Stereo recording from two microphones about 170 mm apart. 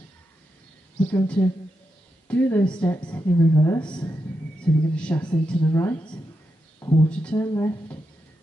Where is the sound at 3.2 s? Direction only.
25° left (ahead or behind).